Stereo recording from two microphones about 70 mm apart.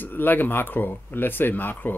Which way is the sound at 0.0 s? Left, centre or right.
Left.